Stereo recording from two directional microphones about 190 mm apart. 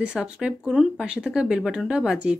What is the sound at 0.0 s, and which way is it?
Speech, 5° right (ahead or behind).